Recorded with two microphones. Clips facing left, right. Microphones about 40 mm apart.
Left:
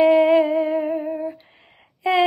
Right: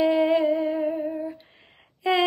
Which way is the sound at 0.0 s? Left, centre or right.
Left.